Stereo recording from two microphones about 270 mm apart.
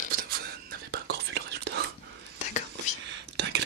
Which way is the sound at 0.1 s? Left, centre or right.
Right.